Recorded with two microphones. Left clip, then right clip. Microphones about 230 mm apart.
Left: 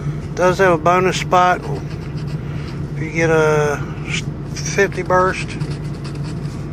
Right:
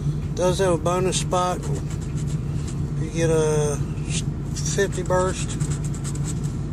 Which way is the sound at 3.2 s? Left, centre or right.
Centre.